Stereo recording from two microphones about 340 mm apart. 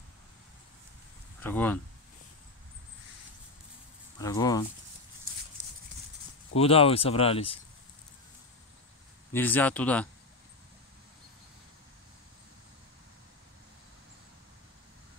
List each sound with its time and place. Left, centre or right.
1.4 s speech: centre
4.2 s speech: centre
6.5 s speech: centre
9.3 s speech: centre